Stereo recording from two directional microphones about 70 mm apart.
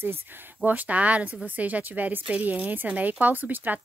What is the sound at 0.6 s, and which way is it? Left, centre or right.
A woman's voice, right.